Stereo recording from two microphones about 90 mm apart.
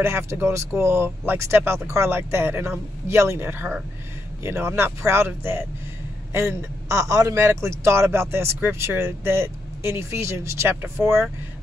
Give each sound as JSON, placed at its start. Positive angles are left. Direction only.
{"t": 0.0, "sound": "speech", "side_deg": -30}